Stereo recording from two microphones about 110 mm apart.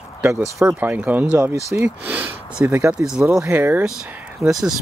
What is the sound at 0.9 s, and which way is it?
Speech, 15° right (ahead or behind).